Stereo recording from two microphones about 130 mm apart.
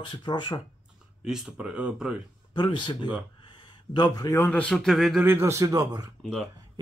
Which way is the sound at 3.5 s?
35° left (ahead or behind).